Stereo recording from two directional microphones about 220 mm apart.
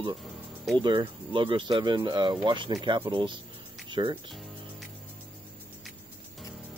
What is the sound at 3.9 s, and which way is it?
Speech, 20° right (ahead or behind).